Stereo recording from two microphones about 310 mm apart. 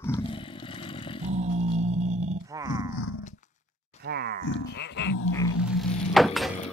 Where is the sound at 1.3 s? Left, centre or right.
Right.